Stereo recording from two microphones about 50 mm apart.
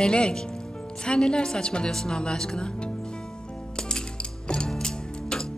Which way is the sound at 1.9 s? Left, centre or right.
Centre.